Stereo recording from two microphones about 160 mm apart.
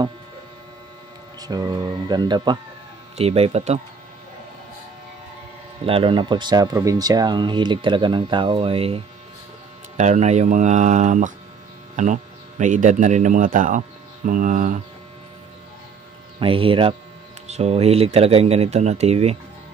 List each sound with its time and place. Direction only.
1.4 s speech: 25° right (ahead or behind)
3.2 s speech: 40° right (ahead or behind)
5.9 s speech: 35° right (ahead or behind); by 14.8 s 55° right (ahead or behind)
16.3 s speech: 35° right (ahead or behind)